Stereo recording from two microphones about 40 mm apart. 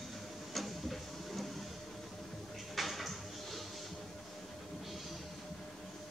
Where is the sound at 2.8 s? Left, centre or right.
Centre.